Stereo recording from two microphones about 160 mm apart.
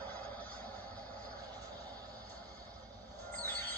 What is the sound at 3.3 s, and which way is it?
Music, 10° left (ahead or behind).